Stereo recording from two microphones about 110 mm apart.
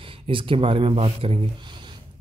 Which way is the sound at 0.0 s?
55° right (ahead or behind).